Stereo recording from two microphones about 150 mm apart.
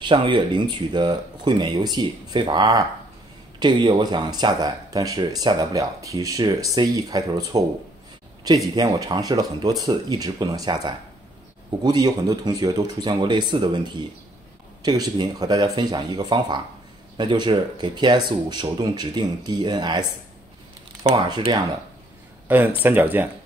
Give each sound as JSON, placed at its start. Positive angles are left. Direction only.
{"t": 0.0, "sound": "speech", "side_deg": -30}
{"t": 22.8, "sound": "speech", "side_deg": -10}